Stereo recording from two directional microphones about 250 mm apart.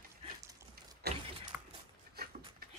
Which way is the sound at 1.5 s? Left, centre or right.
Centre.